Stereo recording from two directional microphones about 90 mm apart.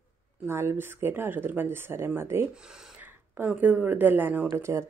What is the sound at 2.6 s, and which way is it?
Speech, 5° right (ahead or behind).